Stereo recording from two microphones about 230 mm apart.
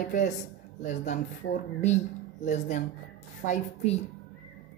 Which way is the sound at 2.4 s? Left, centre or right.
Left.